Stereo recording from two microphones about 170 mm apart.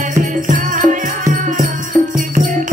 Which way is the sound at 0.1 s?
50° right (ahead or behind).